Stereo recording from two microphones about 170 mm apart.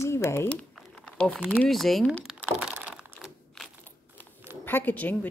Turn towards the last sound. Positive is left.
turn(degrees=10)  # may be behind; listen again after turning